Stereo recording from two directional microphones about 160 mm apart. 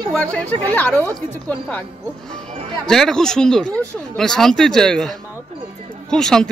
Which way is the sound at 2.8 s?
5° left (ahead or behind).